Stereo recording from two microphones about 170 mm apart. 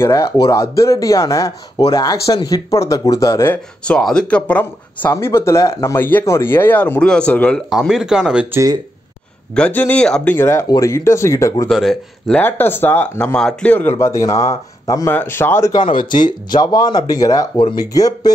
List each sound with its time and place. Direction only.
0.0 s speech: 20° left (ahead or behind)
3.8 s speech: 5° left (ahead or behind)
9.5 s speech: 10° left (ahead or behind)
11.7 s speech: centre (ahead or behind); by 15.8 s 15° left (ahead or behind)
15.9 s speech: 50° left (ahead or behind)
16.4 s speech: 25° left (ahead or behind)